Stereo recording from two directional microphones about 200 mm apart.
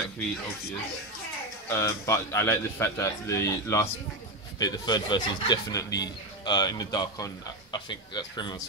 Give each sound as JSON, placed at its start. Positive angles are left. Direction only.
{"t": 1.7, "sound": "a man's voice", "side_deg": 15}